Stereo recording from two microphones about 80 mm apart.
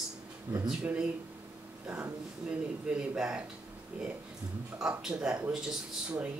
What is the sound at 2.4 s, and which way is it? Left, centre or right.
Speech, centre.